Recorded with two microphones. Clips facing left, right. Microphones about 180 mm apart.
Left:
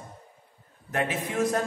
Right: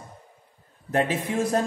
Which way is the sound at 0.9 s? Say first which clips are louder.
Right 4 dB; 30° right (ahead or behind).